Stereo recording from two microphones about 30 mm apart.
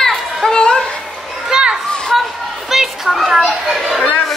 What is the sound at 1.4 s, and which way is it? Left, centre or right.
Children playing, right.